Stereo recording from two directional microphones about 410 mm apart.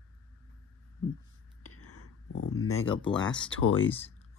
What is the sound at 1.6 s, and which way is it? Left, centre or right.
Whispering, left.